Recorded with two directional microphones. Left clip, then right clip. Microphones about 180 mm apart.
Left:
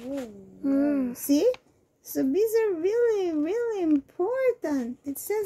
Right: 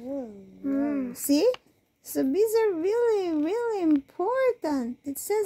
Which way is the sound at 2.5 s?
5° right (ahead or behind).